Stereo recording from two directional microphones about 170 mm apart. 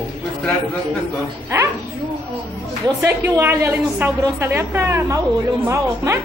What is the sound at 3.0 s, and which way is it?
A woman's voice, 15° right (ahead or behind).